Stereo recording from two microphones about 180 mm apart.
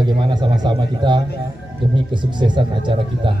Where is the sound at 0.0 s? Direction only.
25° right (ahead or behind).